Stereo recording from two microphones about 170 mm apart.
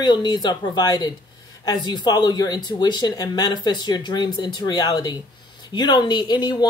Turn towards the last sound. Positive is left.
turn(degrees=25)  # may be behind; listen again after turning